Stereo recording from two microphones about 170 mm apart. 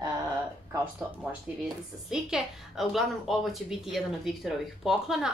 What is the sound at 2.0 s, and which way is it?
A woman's voice, centre (ahead or behind).